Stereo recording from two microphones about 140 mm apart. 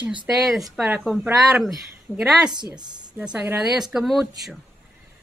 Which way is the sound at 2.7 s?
30° right (ahead or behind).